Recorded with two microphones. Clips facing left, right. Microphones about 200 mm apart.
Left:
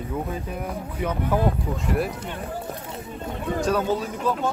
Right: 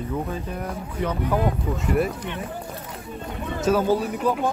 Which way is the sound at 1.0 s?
10° left (ahead or behind).